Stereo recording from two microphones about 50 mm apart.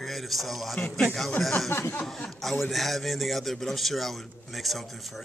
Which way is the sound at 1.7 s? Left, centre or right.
Left.